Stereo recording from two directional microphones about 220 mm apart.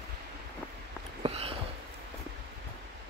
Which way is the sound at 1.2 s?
25° right (ahead or behind).